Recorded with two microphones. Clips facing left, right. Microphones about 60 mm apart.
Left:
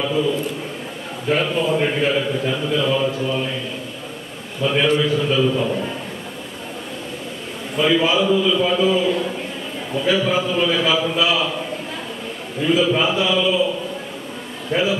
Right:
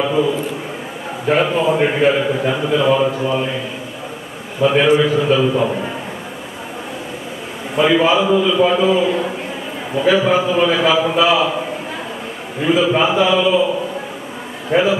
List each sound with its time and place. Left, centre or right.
0.0 s a man's voice: centre
3.1 s a man's voice: centre
7.7 s a man's voice: centre